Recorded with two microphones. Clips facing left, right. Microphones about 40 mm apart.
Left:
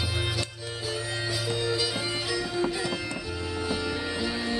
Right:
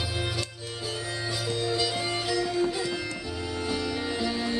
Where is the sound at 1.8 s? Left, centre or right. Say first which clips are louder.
Right 1 dB; centre.